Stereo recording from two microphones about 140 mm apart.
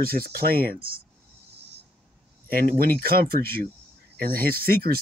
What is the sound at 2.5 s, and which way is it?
Speech, 90° right.